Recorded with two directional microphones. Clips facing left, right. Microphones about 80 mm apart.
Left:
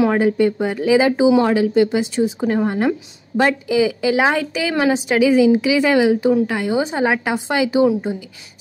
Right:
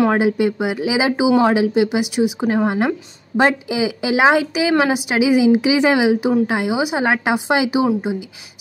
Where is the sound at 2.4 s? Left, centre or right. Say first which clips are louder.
Left 1 dB; right.